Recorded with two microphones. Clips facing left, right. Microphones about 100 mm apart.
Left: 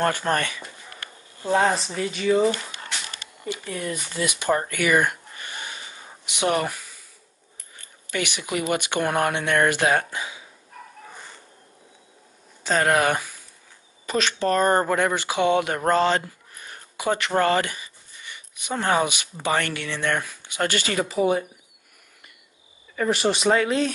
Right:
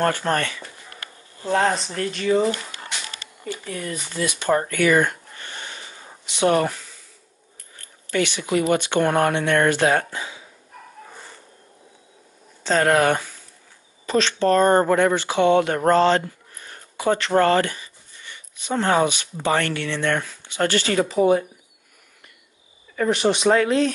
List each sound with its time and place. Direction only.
0.0 s speech: 15° left (ahead or behind)
1.4 s speech: 5° left (ahead or behind)
3.5 s speech: 10° left (ahead or behind)
4.6 s a sound: 15° left (ahead or behind)
6.2 s speech: 15° left (ahead or behind)
8.1 s speech: 15° left (ahead or behind)
12.6 s speech: 15° left (ahead or behind)
15.9 s a sound: 15° left (ahead or behind)
17.4 s speech: 15° left (ahead or behind)
22.9 s speech: centre (ahead or behind)